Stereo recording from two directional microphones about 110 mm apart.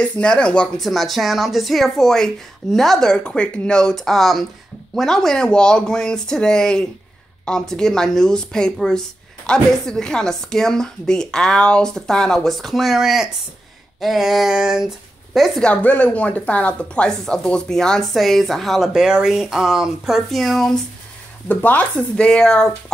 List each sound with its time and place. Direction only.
0.0 s speech: 10° left (ahead or behind)
15.7 s speech: 15° left (ahead or behind)
21.5 s speech: 15° left (ahead or behind)